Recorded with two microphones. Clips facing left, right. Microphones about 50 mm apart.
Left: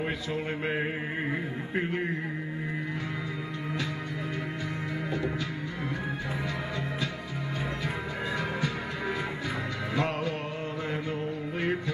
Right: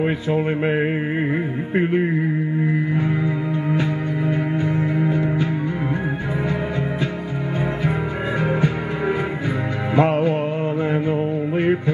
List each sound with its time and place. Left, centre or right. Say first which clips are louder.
0.0 s a sound: right 11 dB; right
1.8 s a man's voice: right 11 dB; right
3.7 s music: right 11 dB; right
8.4 s music: right 10 dB; right
10.9 s mantra: right 11 dB; right